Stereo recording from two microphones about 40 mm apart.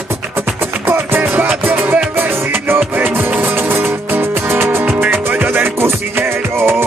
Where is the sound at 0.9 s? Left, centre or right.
Right.